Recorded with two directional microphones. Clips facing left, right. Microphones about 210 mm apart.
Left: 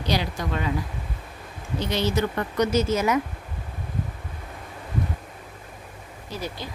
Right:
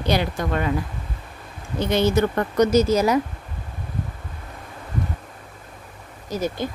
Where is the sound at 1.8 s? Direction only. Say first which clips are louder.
Right 5 dB; 50° right (ahead or behind).